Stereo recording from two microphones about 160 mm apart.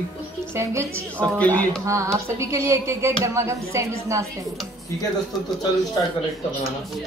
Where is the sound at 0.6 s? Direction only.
15° right (ahead or behind).